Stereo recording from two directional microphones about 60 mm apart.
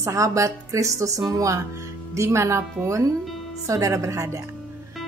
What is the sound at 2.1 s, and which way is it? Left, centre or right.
A woman's voice, right.